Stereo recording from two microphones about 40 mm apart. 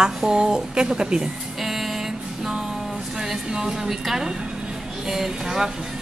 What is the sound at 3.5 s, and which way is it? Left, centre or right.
A woman's voice, centre.